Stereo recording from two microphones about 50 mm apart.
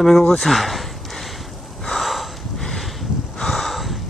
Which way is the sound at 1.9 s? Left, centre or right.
Centre.